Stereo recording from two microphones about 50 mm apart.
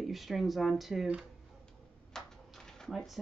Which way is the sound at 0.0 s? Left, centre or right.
Centre.